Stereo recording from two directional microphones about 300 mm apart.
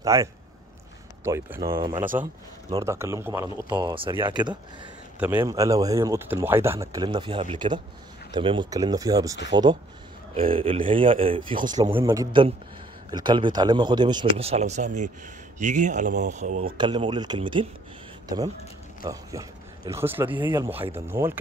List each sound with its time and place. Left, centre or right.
0.0 s a man's voice: centre
19.0 s speech: centre